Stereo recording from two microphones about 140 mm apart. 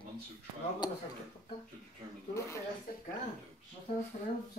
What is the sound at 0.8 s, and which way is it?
Speech, 30° left (ahead or behind).